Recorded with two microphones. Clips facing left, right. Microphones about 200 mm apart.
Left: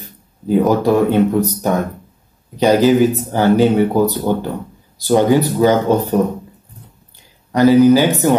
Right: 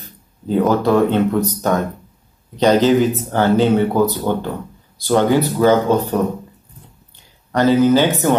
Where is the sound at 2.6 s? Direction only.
15° left (ahead or behind).